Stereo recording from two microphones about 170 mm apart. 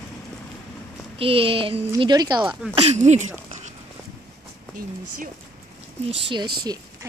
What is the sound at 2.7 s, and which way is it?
Speech, 40° right (ahead or behind).